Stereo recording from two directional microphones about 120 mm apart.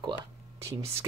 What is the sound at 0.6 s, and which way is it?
Speech, 25° right (ahead or behind).